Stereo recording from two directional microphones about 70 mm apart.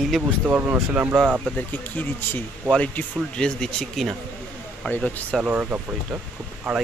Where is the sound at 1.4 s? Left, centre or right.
Left.